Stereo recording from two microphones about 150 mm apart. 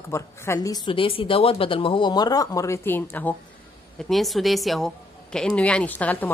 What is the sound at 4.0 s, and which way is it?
A woman's voice, centre (ahead or behind).